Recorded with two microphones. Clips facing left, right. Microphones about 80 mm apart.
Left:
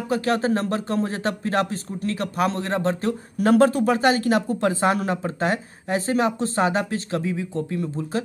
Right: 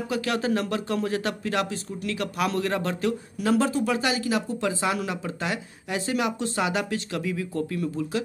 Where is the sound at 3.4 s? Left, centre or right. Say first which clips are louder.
Left 6 dB; left.